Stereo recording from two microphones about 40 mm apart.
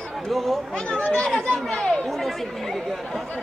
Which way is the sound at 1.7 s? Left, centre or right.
Left.